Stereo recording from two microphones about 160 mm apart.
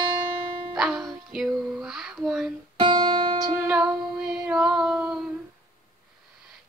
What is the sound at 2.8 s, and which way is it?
Music, 25° right (ahead or behind).